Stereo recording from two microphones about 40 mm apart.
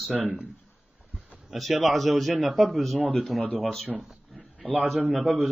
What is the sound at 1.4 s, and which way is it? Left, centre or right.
A man's voice, centre.